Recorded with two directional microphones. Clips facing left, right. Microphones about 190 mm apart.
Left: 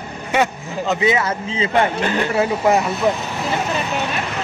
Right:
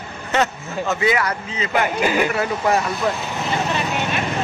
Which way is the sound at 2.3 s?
25° left (ahead or behind).